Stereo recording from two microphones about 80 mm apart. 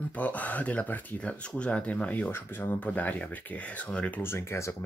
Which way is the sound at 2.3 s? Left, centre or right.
Left.